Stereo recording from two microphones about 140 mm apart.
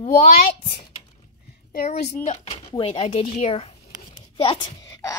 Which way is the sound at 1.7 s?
75° left (ahead or behind).